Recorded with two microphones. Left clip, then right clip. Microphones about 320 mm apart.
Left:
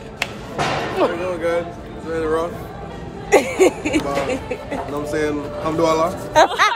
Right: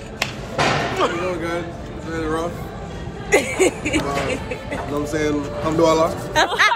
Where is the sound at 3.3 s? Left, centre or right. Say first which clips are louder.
Left 3 dB; centre.